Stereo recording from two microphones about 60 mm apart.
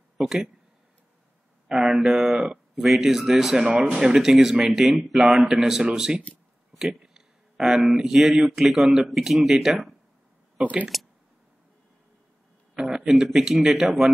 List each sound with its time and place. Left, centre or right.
0.2 s speech: centre
1.7 s speech: centre
10.6 s speech: right
12.7 s a man's voice: centre